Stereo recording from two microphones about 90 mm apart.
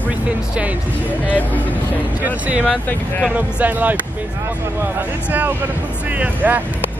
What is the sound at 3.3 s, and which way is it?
Speech, 20° right (ahead or behind).